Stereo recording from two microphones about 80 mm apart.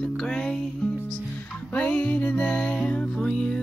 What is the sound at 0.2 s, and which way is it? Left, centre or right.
Music, centre.